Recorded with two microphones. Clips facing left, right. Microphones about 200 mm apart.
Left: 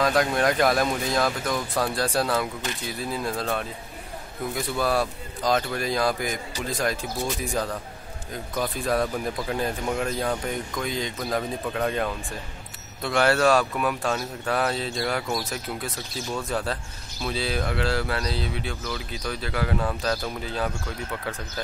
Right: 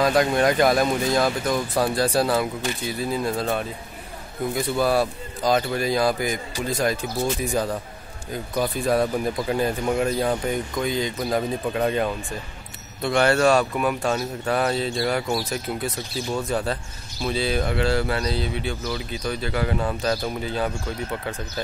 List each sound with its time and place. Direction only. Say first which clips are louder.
0.0 s speech: right 3 dB; centre (ahead or behind)
16.3 s speech: right 3 dB; centre (ahead or behind)